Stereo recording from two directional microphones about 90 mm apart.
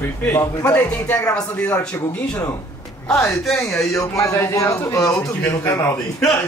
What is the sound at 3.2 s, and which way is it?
Speech, 25° left (ahead or behind).